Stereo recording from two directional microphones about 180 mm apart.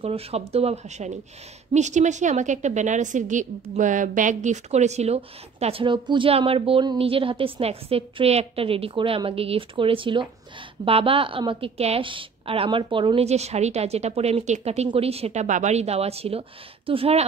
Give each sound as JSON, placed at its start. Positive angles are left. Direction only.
{"t": 0.0, "sound": "a woman's voice", "side_deg": -35}